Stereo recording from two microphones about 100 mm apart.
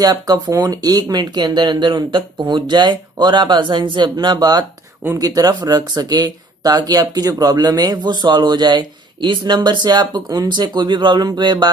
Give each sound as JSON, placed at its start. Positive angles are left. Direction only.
{"t": 0.0, "sound": "speech", "side_deg": -40}